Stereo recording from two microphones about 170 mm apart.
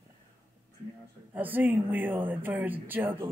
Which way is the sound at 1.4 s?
10° right (ahead or behind).